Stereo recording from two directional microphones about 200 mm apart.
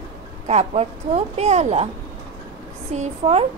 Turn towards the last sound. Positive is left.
turn(degrees=-30)  # may be behind; listen again after turning